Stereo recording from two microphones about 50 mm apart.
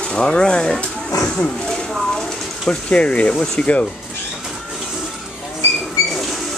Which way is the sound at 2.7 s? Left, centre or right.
Left.